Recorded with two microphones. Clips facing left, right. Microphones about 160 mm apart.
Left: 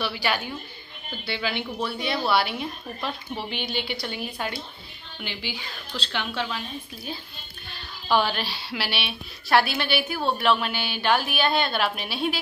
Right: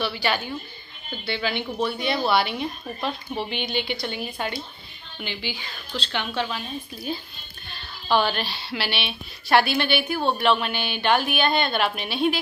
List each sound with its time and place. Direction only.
0.0 s a woman's voice: 5° left (ahead or behind)
8.1 s a woman's voice: 5° left (ahead or behind)